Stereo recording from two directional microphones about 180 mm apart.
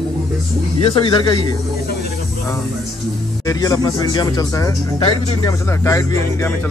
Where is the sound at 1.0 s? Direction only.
25° left (ahead or behind).